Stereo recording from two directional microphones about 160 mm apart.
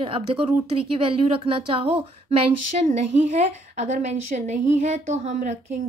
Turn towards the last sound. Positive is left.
turn(degrees=-50)  # may be behind; listen again after turning